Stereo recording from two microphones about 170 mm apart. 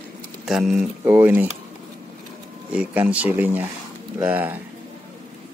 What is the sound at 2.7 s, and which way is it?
Speech, 10° right (ahead or behind).